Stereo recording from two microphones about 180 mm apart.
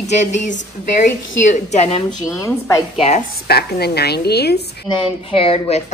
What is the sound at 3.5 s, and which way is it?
A woman's voice, 60° left (ahead or behind).